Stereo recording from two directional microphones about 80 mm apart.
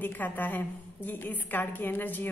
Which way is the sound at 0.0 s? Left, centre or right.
Left.